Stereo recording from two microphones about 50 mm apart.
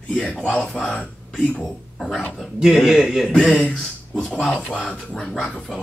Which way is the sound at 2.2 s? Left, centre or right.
Centre.